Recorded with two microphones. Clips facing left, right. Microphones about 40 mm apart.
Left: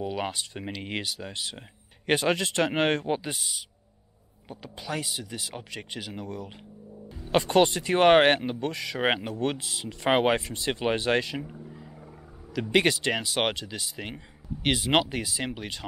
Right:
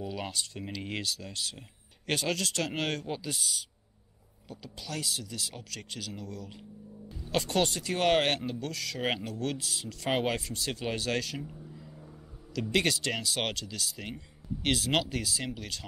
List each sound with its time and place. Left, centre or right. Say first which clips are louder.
0.0 s speech: left 5 dB; left
4.5 s speech: left 6 dB; left